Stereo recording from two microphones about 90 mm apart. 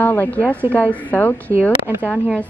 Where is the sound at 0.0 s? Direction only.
20° left (ahead or behind).